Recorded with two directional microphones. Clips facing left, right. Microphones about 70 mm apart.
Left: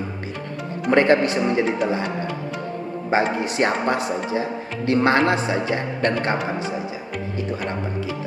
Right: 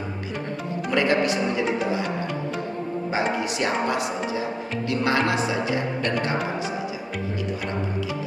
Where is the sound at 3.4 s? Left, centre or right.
Left.